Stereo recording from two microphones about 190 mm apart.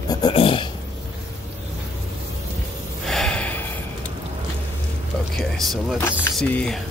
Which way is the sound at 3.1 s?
5° left (ahead or behind).